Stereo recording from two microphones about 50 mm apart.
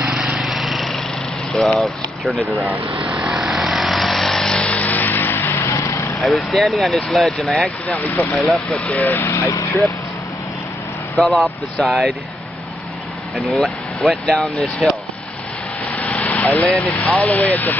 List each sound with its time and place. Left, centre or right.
0.4 s lawn mower: centre
3.0 s vehicle: centre
4.7 s vehicle: left
6.1 s speech: centre
7.9 s speech: left
8.3 s speech: centre
8.6 s speech: left
9.0 s speech: left
11.1 s speech: centre
13.6 s speech: centre
15.9 s vehicle: left
16.7 s speech: left